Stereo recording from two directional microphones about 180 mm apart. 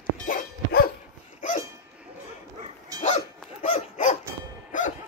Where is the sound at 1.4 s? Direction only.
45° left (ahead or behind).